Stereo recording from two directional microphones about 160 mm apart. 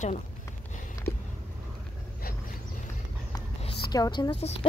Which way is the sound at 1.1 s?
80° left.